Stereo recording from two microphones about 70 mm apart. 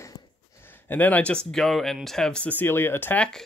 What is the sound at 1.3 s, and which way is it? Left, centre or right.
Speech, centre.